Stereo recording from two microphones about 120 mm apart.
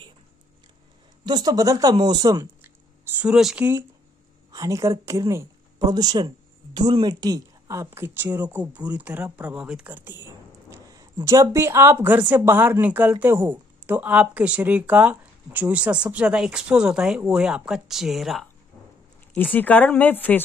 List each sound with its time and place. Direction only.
1.2 s speech: 35° right (ahead or behind)
3.2 s speech: 5° right (ahead or behind)
4.5 s a woman's voice: 30° right (ahead or behind)
10.7 s speech: 30° right (ahead or behind); by 18.4 s centre (ahead or behind)
19.5 s speech: 15° left (ahead or behind)